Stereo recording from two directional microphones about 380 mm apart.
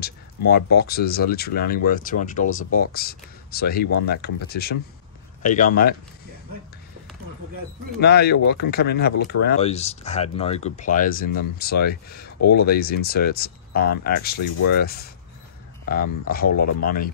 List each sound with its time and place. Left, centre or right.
0.7 s speech: left
8.0 s speech: left
12.1 s a sound: left
12.4 s speech: left